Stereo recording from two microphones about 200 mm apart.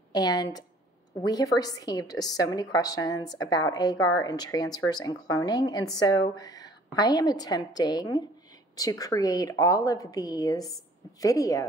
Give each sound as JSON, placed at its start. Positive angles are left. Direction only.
{"t": 0.1, "sound": "a woman's voice", "side_deg": 20}